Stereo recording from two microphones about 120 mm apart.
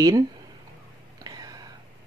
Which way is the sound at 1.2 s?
35° right (ahead or behind).